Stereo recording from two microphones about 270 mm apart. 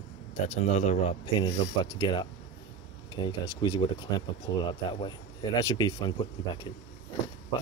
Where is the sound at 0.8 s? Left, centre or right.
Left.